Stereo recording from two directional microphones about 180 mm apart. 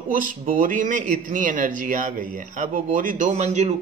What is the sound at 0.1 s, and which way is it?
Speech, 50° right (ahead or behind).